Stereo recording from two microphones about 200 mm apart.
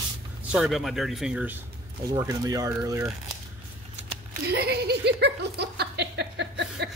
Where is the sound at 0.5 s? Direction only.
Centre (ahead or behind).